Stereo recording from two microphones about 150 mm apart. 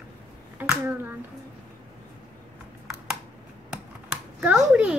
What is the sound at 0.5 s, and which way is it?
Speech, 15° right (ahead or behind).